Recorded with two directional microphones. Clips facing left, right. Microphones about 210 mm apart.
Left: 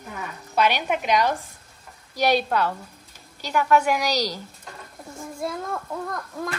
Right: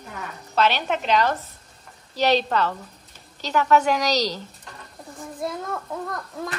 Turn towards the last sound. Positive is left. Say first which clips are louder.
# left 1 dB
turn(degrees=0)  # may be behind; listen again after turning